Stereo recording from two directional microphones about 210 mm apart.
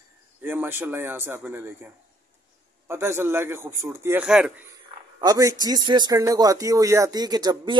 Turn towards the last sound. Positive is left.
turn(degrees=-20)  # may be behind; listen again after turning